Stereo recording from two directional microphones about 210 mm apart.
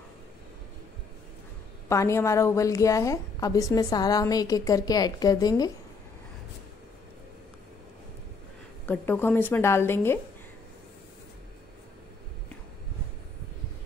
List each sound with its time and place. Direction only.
1.9 s a woman's voice: 15° left (ahead or behind)
8.8 s a woman's voice: 10° left (ahead or behind)